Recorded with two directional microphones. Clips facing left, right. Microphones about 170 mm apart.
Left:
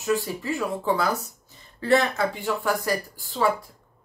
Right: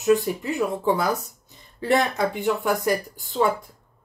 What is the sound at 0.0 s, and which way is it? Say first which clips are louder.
Speech: right 5 dB; 20° right (ahead or behind).